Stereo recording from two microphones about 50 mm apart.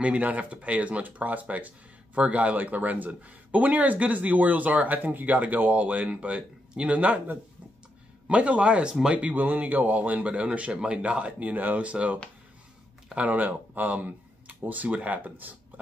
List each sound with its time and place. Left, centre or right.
0.0 s speech: right
8.3 s speech: right